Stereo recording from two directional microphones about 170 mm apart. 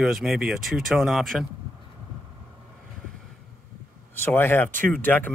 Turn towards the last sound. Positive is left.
turn(degrees=10)  # may be behind; listen again after turning